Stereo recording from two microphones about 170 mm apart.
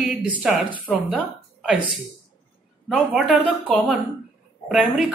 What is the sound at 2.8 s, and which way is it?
A woman's voice, centre (ahead or behind).